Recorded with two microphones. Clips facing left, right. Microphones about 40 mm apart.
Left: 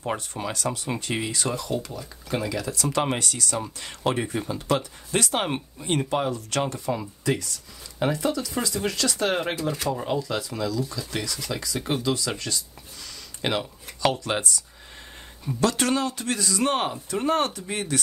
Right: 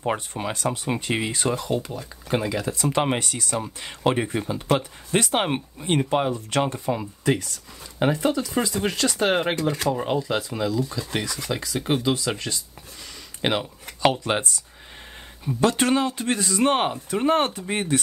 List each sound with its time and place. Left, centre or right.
0.3 s speech: right
8.0 s speech: right
9.6 s speech: right
9.8 s speech: right
15.6 s speech: right